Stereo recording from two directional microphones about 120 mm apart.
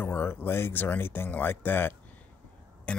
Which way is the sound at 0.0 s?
20° left (ahead or behind).